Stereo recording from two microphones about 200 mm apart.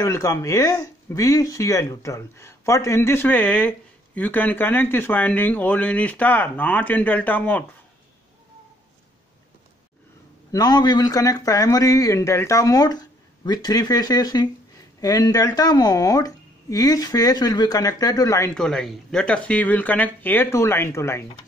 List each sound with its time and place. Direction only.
0.0 s speech: 15° left (ahead or behind)
10.5 s speech: 20° left (ahead or behind)
18.5 s speech: 5° left (ahead or behind)